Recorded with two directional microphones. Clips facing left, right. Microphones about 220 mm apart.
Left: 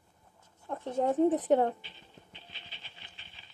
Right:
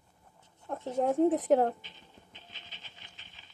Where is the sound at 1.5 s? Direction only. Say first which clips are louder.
Right 1 dB; centre (ahead or behind).